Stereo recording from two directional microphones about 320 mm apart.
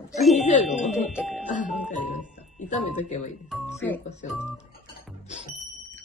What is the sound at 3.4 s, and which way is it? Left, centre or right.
Speech, centre.